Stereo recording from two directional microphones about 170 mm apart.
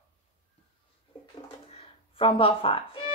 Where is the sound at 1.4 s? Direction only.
35° left (ahead or behind).